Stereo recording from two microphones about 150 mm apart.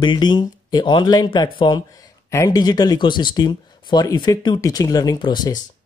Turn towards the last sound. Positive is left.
turn(degrees=25)  # may be behind; listen again after turning